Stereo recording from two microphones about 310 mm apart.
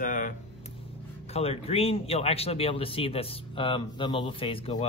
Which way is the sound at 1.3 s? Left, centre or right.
Centre.